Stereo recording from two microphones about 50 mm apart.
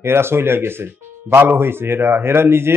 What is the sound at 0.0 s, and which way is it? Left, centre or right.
Speech, right.